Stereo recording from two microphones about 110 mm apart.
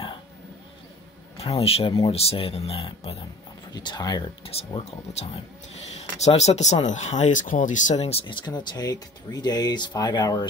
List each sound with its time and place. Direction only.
1.4 s speech: 70° left (ahead or behind)
3.7 s speech: 40° left (ahead or behind)
4.5 s speech: 60° left (ahead or behind)
5.9 s speech: 90° left
7.9 s speech: 70° left (ahead or behind)
8.3 s speech: 40° left (ahead or behind)